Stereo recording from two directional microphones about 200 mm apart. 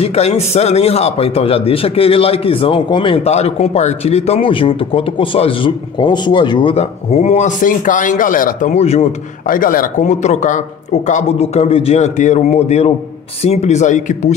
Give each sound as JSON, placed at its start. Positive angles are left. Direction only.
{"t": 0.0, "sound": "a man's voice", "side_deg": 30}
{"t": 9.5, "sound": "a man's voice", "side_deg": 45}